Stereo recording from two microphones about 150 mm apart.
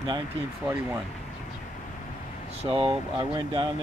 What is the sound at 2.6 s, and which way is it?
Speech, 35° right (ahead or behind).